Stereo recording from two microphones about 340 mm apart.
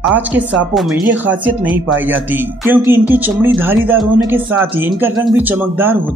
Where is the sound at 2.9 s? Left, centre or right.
Centre.